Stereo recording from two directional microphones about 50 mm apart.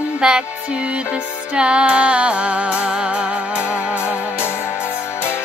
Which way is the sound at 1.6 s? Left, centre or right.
Right.